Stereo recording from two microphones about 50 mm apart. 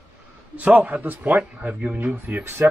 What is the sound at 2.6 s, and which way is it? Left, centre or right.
Speech, right.